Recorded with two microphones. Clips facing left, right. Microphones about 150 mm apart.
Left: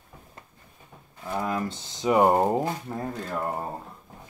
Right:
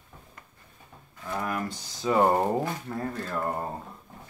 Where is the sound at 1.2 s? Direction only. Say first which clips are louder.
Left 3 dB; 20° left (ahead or behind).